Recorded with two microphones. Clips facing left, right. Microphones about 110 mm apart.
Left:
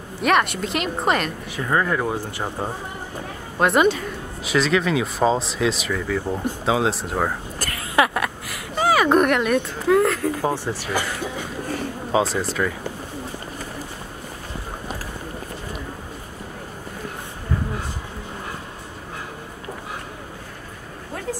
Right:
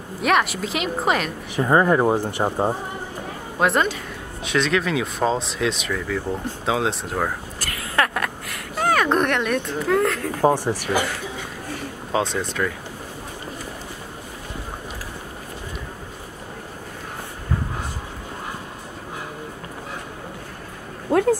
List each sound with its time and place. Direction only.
0.2 s speech: centre (ahead or behind)
1.6 s speech: 30° right (ahead or behind)
3.5 s a woman's voice: centre (ahead or behind)
7.9 s a sound: 5° left (ahead or behind)
10.4 s speech: 15° right (ahead or behind)
12.1 s speech: 5° left (ahead or behind)
21.1 s a sound: 60° right (ahead or behind)